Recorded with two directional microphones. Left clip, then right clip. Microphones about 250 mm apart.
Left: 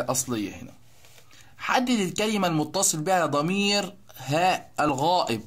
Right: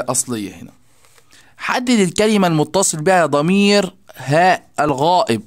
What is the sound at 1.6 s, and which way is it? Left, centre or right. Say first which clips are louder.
Speech: right 7 dB; right.